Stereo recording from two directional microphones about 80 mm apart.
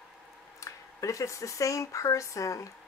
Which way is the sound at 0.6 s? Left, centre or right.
Left.